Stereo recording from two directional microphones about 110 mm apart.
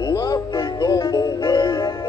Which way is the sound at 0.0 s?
35° left (ahead or behind).